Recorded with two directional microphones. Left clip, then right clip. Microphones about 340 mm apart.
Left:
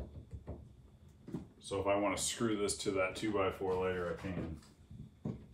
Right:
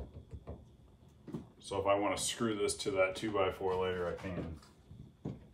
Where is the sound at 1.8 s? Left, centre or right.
Centre.